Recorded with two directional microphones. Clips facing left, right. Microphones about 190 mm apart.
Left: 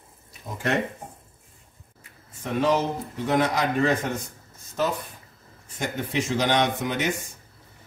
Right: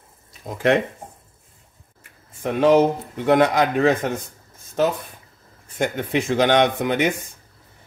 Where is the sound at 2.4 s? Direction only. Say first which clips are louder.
Right 7 dB; 55° right (ahead or behind).